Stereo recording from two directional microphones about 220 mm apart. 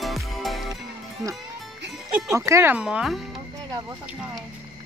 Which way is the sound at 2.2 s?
15° right (ahead or behind).